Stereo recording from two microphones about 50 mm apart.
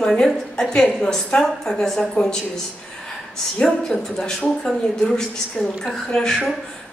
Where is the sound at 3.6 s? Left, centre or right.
Centre.